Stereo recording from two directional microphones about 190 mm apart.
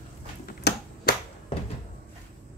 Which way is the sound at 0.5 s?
50° left (ahead or behind).